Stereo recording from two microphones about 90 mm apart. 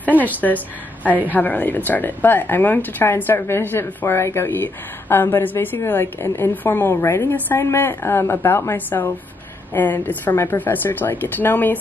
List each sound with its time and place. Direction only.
0.2 s speech: 20° left (ahead or behind)